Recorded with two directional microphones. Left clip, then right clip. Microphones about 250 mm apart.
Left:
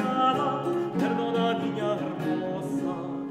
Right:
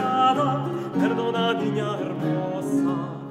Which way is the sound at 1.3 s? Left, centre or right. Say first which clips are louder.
Right 3 dB; right.